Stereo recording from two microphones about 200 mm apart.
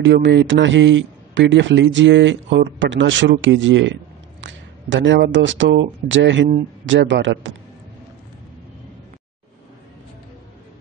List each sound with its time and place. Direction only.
0.0 s a man's voice: 60° right (ahead or behind)